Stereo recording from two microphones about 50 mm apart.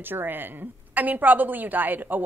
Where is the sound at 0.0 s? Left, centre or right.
Right.